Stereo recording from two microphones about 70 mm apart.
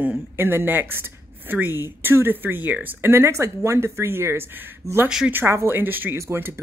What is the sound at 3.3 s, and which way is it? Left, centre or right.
A woman's voice, right.